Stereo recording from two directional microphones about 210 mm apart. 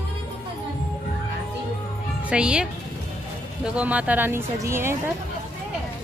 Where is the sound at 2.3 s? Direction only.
5° right (ahead or behind).